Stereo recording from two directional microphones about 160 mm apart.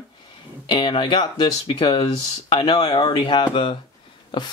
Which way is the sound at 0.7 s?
30° left (ahead or behind).